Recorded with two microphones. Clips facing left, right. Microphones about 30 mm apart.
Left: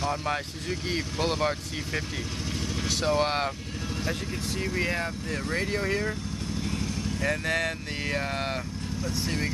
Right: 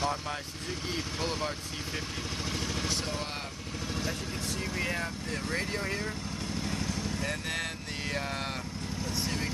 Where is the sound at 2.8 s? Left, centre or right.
Left.